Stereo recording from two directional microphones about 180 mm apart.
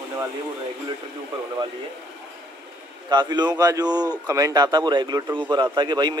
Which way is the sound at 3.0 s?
25° right (ahead or behind).